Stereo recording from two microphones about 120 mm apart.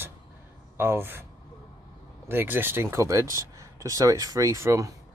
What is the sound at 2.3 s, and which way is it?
Speech, 15° right (ahead or behind).